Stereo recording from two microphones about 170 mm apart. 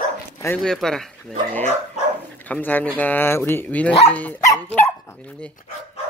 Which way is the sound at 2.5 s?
10° left (ahead or behind).